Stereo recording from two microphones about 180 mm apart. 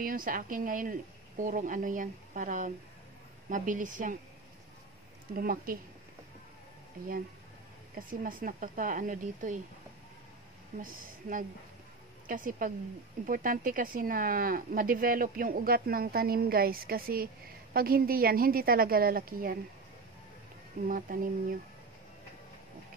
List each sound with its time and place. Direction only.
0.0 s speech: 50° right (ahead or behind)
5.3 s speech: 50° right (ahead or behind)
8.1 s speech: 50° right (ahead or behind)
10.8 s a woman's voice: 50° right (ahead or behind)
20.9 s speech: 50° right (ahead or behind)